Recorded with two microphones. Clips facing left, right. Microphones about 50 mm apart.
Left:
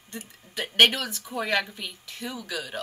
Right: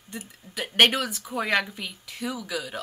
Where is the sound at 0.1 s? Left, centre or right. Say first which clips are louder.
Right 1 dB; centre.